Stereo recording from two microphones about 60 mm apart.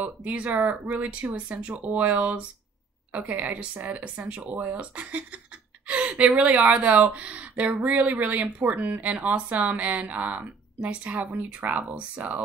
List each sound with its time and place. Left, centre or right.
0.5 s speech: right